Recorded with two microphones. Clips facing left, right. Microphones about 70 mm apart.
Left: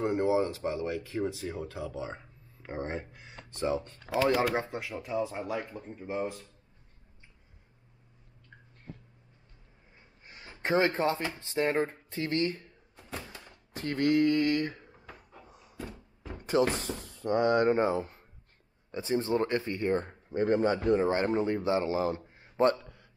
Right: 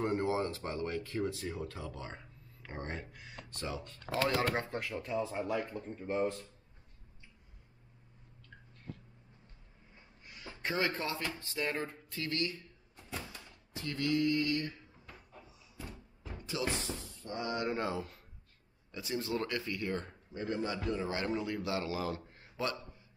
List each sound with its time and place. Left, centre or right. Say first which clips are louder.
0.0 s speech: left 5 dB; centre
4.0 s speech: left 5 dB; centre
10.2 s a sound: left 4 dB; left
11.4 s speech: left 10 dB; left
13.3 s a sound: left 3 dB; left
15.4 s cupboard open or close: left 5 dB; left
16.2 s speech: left 12 dB; left
17.7 s a man's voice: left 8 dB; left
20.2 s a man's voice: left 11 dB; left
22.6 s speech: left 12 dB; left